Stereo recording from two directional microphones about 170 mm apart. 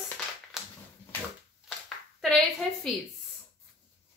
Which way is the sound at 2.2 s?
Centre (ahead or behind).